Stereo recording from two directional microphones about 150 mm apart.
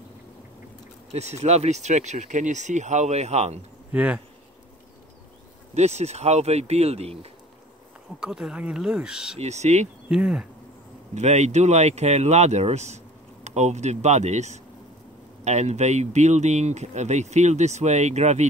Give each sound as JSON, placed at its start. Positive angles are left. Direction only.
{"t": 1.1, "sound": "speech", "side_deg": -45}
{"t": 3.9, "sound": "speech", "side_deg": -10}
{"t": 5.8, "sound": "speech", "side_deg": -45}
{"t": 8.2, "sound": "speech", "side_deg": -5}
{"t": 9.4, "sound": "speech", "side_deg": -50}
{"t": 10.0, "sound": "speech", "side_deg": -5}
{"t": 11.1, "sound": "speech", "side_deg": -50}